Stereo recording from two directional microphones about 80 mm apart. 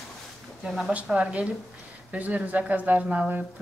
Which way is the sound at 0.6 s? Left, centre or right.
Centre.